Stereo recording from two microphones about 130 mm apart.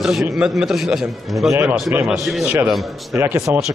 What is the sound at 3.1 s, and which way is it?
Speech, 15° right (ahead or behind).